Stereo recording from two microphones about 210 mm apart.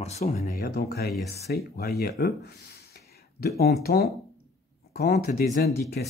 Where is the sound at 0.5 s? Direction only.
50° left (ahead or behind).